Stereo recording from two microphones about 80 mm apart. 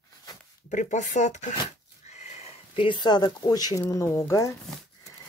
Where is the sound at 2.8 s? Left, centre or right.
Left.